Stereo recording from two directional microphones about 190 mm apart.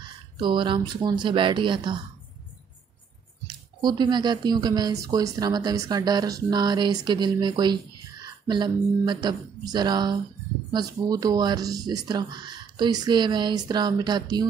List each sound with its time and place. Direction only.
0.0 s speech: 25° right (ahead or behind)
3.4 s speech: 25° right (ahead or behind)